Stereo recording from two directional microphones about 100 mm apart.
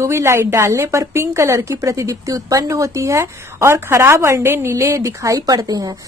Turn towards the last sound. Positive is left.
turn(degrees=-40)  # may be behind; listen again after turning